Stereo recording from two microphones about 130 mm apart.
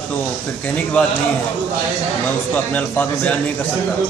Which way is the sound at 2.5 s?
15° left (ahead or behind).